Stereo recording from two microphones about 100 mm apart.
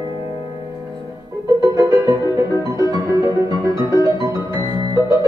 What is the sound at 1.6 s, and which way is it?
Music, 35° right (ahead or behind).